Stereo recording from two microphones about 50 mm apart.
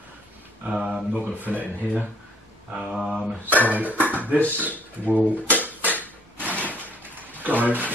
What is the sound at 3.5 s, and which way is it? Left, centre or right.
Speech, right.